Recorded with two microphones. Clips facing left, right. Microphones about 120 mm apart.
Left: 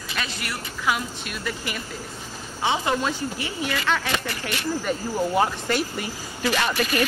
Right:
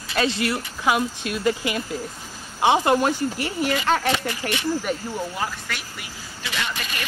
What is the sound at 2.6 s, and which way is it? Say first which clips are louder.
Speech: right 5 dB; 55° right (ahead or behind).